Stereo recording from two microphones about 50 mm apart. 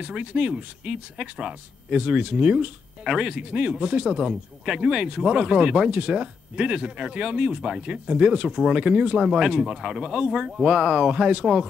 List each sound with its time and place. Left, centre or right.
0.0 s speech: right
8.7 s speech: right